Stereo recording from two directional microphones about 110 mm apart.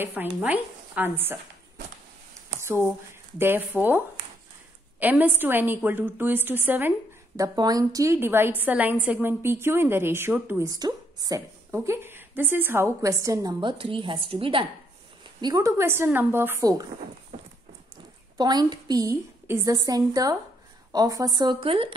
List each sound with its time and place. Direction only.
0.0 s a woman's voice: 15° right (ahead or behind)
2.6 s a woman's voice: 25° right (ahead or behind)
5.0 s a woman's voice: 15° right (ahead or behind)
7.3 s a woman's voice: 35° right (ahead or behind); by 10.6 s 10° right (ahead or behind)
10.6 s a woman's voice: 30° right (ahead or behind)
13.7 s a woman's voice: 50° right (ahead or behind)
15.4 s a woman's voice: 35° right (ahead or behind)
15.8 s a woman's voice: 20° right (ahead or behind)
18.4 s a woman's voice: 40° right (ahead or behind)
19.4 s a woman's voice: 20° right (ahead or behind)
19.7 s a woman's voice: 35° right (ahead or behind)
21.5 s speech: 55° right (ahead or behind)